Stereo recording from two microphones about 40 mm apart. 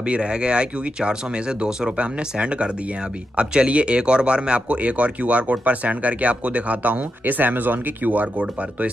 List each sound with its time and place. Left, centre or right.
0.0 s speech: right